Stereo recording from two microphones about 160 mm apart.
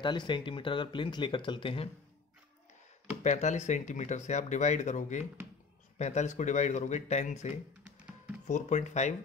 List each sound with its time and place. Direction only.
0.0 s speech: 30° left (ahead or behind)
3.3 s speech: 45° left (ahead or behind)